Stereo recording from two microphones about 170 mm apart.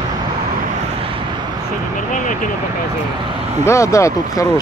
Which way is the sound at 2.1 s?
50° left (ahead or behind).